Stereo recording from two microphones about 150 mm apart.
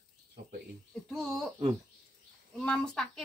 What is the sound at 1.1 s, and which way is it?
Speech, centre (ahead or behind).